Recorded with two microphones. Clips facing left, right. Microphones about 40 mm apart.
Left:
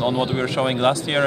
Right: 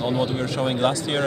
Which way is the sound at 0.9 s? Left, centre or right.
Centre.